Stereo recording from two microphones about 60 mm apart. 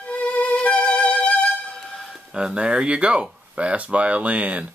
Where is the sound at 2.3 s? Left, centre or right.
Centre.